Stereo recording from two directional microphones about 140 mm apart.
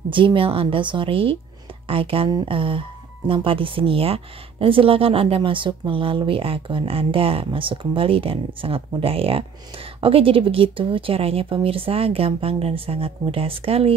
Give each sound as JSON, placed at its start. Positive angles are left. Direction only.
{"t": 0.1, "sound": "speech", "side_deg": -35}